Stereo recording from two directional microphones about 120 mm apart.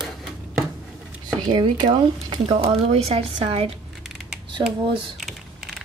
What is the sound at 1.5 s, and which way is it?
A woman's voice, 40° right (ahead or behind).